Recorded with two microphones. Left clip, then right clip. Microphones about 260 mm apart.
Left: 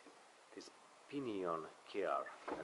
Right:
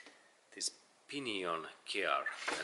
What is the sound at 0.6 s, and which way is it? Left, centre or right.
Speech, centre.